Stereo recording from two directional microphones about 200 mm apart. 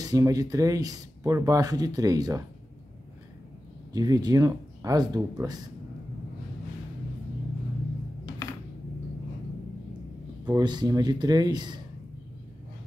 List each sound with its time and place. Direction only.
0.0 s speech: 15° right (ahead or behind)
3.9 s speech: 20° right (ahead or behind)
10.4 s speech: 20° right (ahead or behind)